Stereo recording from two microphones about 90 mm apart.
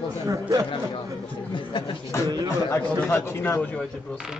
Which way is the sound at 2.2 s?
45° right (ahead or behind).